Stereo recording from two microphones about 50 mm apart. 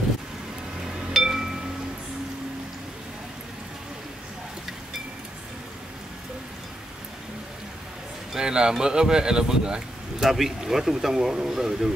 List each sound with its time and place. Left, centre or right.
1.1 s music: centre
8.3 s speech: centre